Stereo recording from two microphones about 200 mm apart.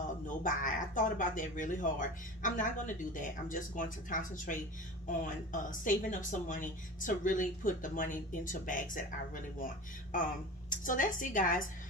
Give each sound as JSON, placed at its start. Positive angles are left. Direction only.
{"t": 0.4, "sound": "a woman's voice", "side_deg": 40}
{"t": 10.7, "sound": "a woman's voice", "side_deg": 40}